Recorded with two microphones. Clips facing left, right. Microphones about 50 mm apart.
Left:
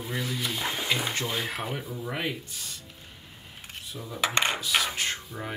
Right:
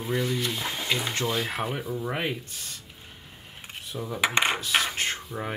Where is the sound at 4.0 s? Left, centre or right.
Right.